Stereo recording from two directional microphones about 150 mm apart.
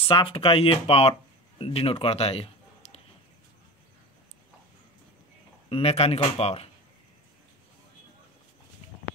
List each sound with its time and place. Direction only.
0.1 s speech: 30° left (ahead or behind)
5.7 s speech: 40° left (ahead or behind)